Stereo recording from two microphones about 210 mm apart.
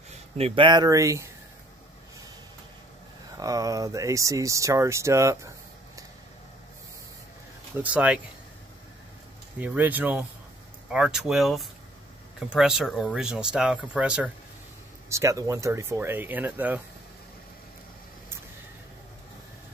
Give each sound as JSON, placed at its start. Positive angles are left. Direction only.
{"t": 0.1, "sound": "speech", "side_deg": -25}
{"t": 3.3, "sound": "speech", "side_deg": -15}
{"t": 7.7, "sound": "speech", "side_deg": -5}
{"t": 9.6, "sound": "speech", "side_deg": -10}